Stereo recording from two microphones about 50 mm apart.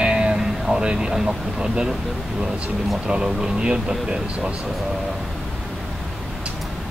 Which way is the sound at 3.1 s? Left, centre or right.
Centre.